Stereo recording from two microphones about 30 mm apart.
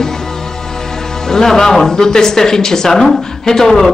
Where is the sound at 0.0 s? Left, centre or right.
Centre.